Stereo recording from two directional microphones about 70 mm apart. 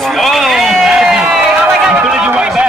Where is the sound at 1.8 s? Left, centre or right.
Centre.